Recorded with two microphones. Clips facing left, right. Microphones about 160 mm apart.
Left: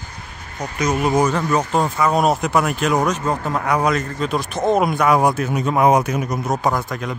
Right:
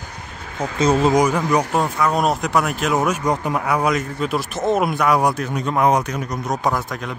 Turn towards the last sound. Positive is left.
turn(degrees=0)  # may be behind; listen again after turning